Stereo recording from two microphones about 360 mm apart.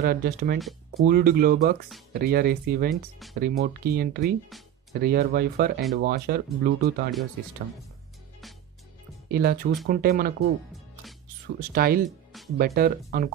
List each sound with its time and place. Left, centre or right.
0.0 s speech: right
2.9 s speech: centre
3.3 s speech: right
9.3 s speech: right
11.7 s speech: right